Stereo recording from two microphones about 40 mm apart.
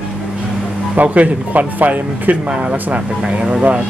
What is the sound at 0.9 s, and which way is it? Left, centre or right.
Speech, right.